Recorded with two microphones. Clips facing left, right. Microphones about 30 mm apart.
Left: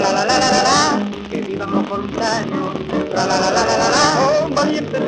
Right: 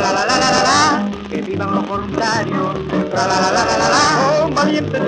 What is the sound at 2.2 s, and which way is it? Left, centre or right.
Music, centre.